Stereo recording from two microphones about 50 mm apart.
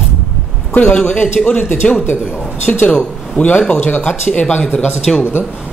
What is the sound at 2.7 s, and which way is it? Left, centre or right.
Speech, centre.